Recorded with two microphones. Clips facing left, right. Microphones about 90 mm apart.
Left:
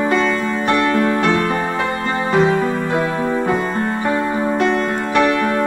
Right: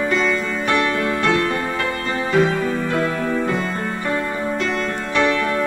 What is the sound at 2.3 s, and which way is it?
Music, 45° left (ahead or behind).